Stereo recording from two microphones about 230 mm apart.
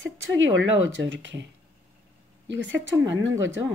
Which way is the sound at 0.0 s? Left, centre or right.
Right.